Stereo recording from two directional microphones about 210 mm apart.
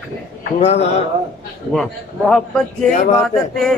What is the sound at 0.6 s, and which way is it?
Speech, 30° left (ahead or behind).